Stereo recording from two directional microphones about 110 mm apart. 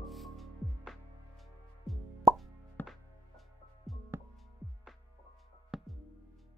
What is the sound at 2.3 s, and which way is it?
Plop, 35° right (ahead or behind).